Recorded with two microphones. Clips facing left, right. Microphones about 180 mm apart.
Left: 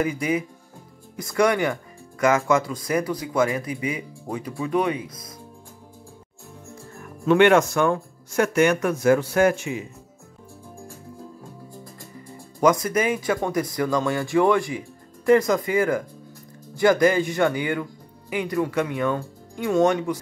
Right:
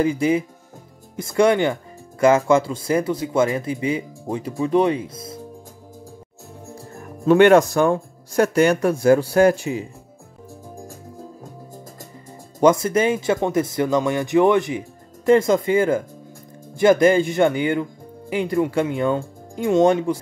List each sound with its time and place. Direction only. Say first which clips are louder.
0.0 s speech: right 5 dB; 30° right (ahead or behind)
6.7 s speech: right 4 dB; 35° right (ahead or behind)
12.5 s speech: right 4 dB; 25° right (ahead or behind)